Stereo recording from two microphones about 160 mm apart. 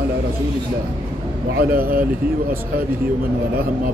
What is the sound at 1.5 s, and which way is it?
Speech, 65° right (ahead or behind).